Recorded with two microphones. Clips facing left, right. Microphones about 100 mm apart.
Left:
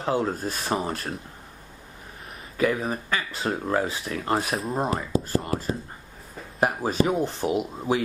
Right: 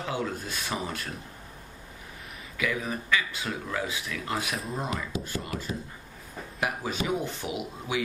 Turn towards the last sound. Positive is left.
turn(degrees=40)  # may be behind; listen again after turning